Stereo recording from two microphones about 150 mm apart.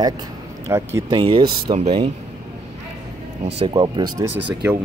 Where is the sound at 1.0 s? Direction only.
35° right (ahead or behind).